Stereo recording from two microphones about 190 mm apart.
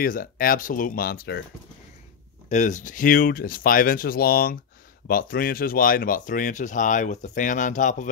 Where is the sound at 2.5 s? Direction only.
40° left (ahead or behind).